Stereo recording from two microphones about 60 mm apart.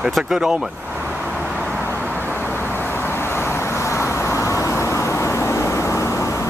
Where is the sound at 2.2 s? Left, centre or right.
Left.